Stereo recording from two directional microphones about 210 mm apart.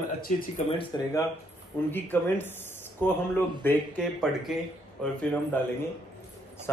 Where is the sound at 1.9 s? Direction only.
10° left (ahead or behind).